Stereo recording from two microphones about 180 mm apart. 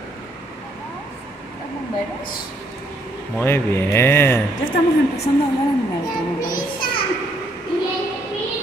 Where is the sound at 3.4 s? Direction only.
15° left (ahead or behind).